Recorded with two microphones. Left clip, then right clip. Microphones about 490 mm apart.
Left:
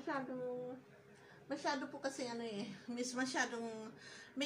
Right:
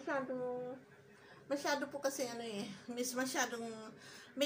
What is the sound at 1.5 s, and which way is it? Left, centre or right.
A woman's voice, left.